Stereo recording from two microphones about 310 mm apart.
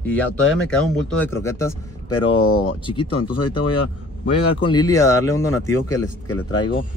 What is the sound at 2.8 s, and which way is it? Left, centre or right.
Speech, centre.